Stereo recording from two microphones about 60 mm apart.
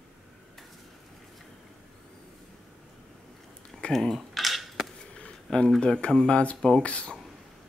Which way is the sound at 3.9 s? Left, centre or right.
Centre.